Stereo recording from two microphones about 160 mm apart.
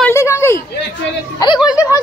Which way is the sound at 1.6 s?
20° left (ahead or behind).